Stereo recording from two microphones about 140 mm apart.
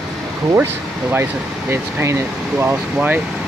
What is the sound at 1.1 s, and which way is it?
Speech, 15° right (ahead or behind).